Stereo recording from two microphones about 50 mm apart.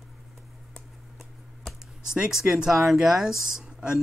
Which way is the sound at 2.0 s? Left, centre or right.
Centre.